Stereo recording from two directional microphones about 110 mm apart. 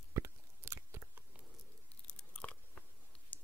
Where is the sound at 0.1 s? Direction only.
25° right (ahead or behind).